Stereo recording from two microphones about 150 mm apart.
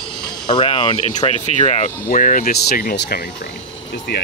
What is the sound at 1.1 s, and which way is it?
Speech, 50° left (ahead or behind).